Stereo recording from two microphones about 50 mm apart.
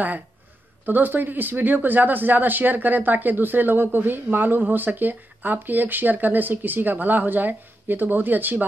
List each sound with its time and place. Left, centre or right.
0.8 s speech: right